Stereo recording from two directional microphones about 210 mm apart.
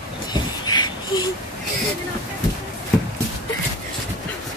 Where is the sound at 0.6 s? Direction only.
20° left (ahead or behind).